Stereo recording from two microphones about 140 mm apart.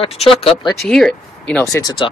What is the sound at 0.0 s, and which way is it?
Speech, 45° left (ahead or behind).